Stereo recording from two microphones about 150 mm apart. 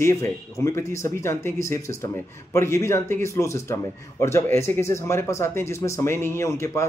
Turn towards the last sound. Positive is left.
turn(degrees=20)  # may be behind; listen again after turning